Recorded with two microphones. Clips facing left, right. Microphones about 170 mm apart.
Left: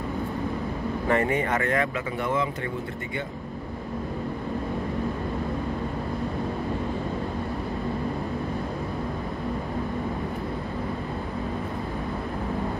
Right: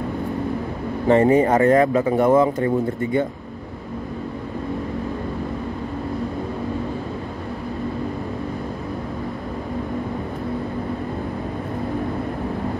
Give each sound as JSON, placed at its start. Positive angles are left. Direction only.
{"t": 1.0, "sound": "speech", "side_deg": -30}